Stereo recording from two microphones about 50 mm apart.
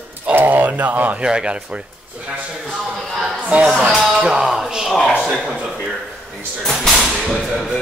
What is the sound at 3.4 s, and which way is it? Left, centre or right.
Speech, right.